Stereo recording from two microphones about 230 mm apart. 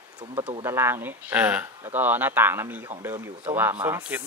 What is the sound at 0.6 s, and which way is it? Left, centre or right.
Speech, centre.